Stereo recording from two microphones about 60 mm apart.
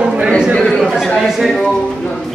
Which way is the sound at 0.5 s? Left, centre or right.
Centre.